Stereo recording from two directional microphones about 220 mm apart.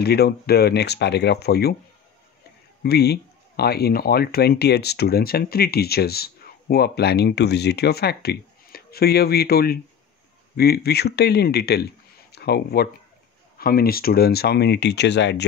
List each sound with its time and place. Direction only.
0.0 s speech: 45° left (ahead or behind)
2.8 s a man's voice: 45° left (ahead or behind)